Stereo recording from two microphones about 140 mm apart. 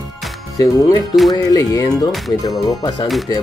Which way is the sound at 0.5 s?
25° left (ahead or behind).